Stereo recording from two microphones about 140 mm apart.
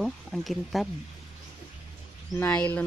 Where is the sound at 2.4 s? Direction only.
10° left (ahead or behind).